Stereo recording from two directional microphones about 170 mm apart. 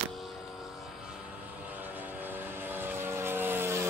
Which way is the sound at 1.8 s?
10° right (ahead or behind).